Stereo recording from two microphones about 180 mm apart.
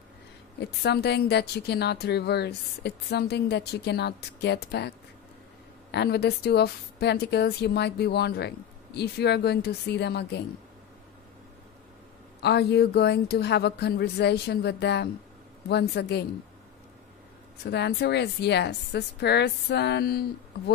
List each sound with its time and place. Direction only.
0.6 s a woman's voice: 65° left (ahead or behind)
12.4 s a woman's voice: 65° left (ahead or behind)
17.6 s speech: 65° left (ahead or behind)